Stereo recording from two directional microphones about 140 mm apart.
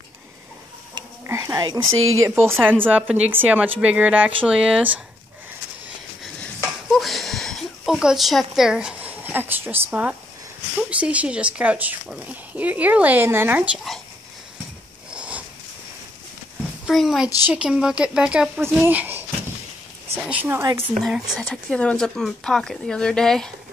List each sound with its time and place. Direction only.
1.2 s whispering: 20° right (ahead or behind)
2.2 s speech: 15° right (ahead or behind)
6.4 s a sound: centre (ahead or behind)
10.8 s speech: 10° right (ahead or behind)
15.0 s a sound: 10° right (ahead or behind)
16.8 s a child's voice: centre (ahead or behind)
20.2 s speech: 15° right (ahead or behind)
20.9 s speech: 5° right (ahead or behind)